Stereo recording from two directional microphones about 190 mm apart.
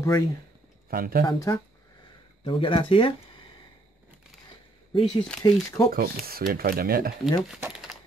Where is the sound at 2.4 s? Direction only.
25° left (ahead or behind).